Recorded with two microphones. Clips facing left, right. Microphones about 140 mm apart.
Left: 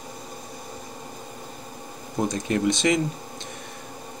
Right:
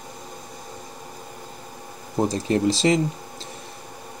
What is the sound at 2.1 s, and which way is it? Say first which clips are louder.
Speech: right 3 dB; 30° right (ahead or behind).